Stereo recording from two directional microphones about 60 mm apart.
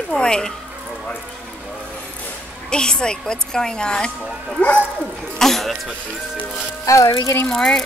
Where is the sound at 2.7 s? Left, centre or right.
Centre.